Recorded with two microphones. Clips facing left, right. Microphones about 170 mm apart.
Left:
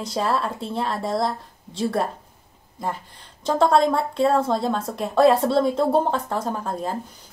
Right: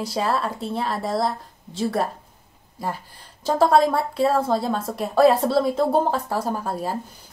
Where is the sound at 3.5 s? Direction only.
5° right (ahead or behind).